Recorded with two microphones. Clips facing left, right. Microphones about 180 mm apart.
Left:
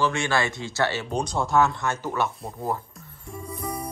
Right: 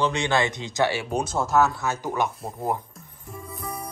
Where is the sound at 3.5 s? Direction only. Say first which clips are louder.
Left 3 dB; centre (ahead or behind).